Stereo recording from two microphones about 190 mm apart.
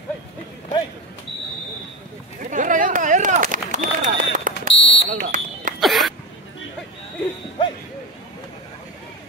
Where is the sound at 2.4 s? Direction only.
45° right (ahead or behind).